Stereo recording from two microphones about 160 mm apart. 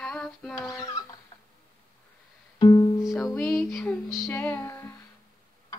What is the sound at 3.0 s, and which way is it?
Music, centre (ahead or behind).